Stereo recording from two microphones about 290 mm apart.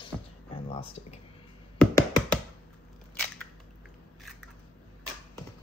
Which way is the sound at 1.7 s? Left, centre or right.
Centre.